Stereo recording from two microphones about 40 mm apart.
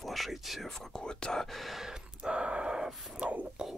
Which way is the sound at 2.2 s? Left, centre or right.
Right.